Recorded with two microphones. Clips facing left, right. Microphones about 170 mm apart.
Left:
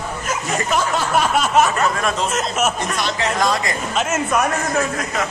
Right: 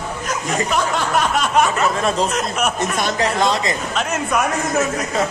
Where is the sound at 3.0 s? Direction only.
45° right (ahead or behind).